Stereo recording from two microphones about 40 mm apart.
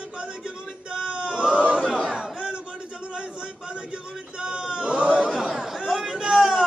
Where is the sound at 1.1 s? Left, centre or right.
Right.